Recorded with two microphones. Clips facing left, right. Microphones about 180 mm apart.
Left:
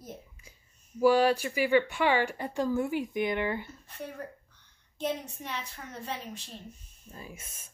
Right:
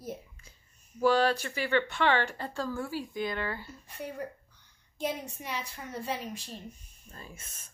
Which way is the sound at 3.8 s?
10° right (ahead or behind).